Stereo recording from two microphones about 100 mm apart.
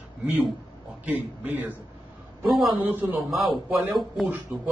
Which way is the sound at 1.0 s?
15° right (ahead or behind).